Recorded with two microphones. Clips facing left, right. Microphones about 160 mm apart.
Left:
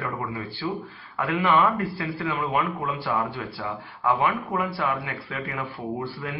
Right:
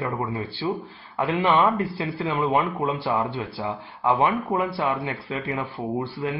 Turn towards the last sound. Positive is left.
turn(degrees=-20)  # may be behind; listen again after turning